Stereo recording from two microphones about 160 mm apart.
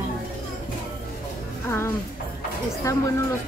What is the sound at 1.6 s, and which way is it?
A woman's voice, 15° left (ahead or behind).